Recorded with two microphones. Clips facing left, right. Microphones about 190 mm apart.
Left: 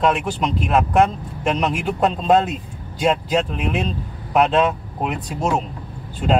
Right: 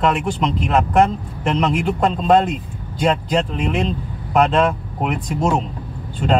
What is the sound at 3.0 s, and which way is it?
Speech, 5° left (ahead or behind).